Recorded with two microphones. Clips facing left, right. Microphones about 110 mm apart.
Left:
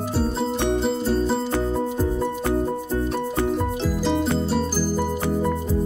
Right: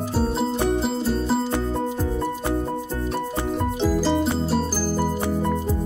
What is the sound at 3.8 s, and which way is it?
Music, centre (ahead or behind).